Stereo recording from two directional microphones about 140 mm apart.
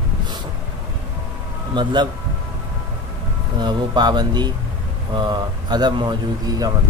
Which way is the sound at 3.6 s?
30° right (ahead or behind).